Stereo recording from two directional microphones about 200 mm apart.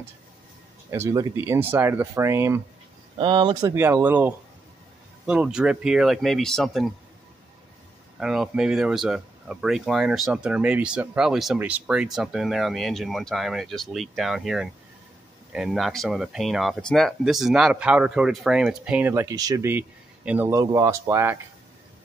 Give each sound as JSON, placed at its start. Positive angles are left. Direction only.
{"t": 0.8, "sound": "speech", "side_deg": -15}
{"t": 3.2, "sound": "speech", "side_deg": -25}
{"t": 3.7, "sound": "speech", "side_deg": -10}
{"t": 8.2, "sound": "speech", "side_deg": -5}